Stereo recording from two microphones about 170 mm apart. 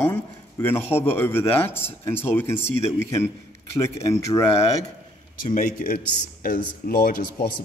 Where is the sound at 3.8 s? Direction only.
15° left (ahead or behind).